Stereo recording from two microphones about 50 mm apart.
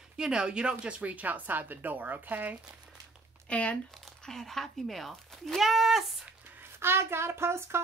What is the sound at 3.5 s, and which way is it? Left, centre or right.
Speech, left.